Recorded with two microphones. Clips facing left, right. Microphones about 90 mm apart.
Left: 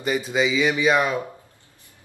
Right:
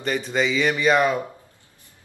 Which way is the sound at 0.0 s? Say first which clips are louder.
Left 1 dB; 5° left (ahead or behind).